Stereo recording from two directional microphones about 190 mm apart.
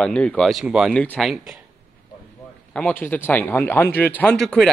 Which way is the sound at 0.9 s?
5° left (ahead or behind).